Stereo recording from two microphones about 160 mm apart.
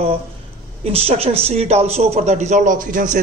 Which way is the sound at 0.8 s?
35° right (ahead or behind).